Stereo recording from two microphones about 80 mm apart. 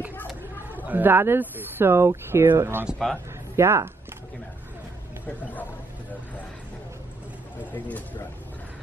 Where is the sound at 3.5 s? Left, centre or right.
Right.